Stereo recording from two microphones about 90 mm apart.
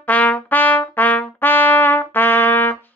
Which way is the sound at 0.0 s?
15° left (ahead or behind).